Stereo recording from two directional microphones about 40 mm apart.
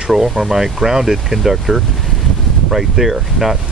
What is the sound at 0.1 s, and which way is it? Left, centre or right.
Speech, centre.